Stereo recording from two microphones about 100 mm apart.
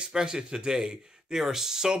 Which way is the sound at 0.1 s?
5° right (ahead or behind).